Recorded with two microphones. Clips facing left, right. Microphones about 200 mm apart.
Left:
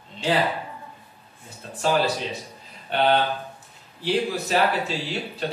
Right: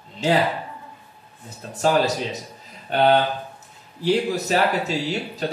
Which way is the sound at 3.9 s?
40° right (ahead or behind).